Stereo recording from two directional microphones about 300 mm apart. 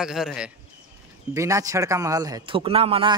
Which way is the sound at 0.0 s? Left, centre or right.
Centre.